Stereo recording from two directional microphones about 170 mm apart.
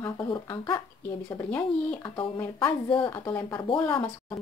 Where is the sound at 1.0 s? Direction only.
15° left (ahead or behind).